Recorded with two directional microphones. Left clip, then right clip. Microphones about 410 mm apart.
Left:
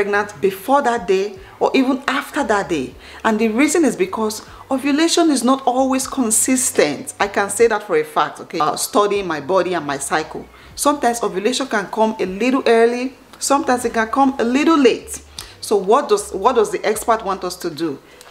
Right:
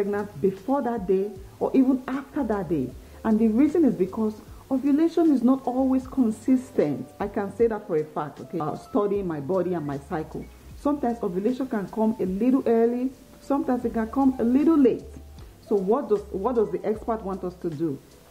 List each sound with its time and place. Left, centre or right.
0.0 s a woman's voice: centre
5.4 s a woman's voice: centre